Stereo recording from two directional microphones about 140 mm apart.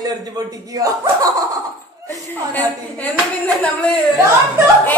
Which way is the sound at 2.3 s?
10° left (ahead or behind).